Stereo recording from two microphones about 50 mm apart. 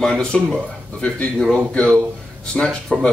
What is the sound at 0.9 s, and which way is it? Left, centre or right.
Speech, left.